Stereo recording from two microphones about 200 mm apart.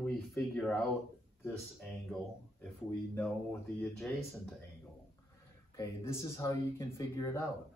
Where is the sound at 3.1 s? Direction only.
5° left (ahead or behind).